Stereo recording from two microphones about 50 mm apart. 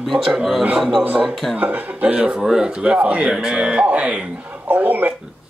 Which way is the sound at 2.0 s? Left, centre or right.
Right.